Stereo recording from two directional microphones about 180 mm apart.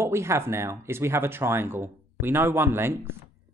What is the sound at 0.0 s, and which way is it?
Speech, 15° right (ahead or behind).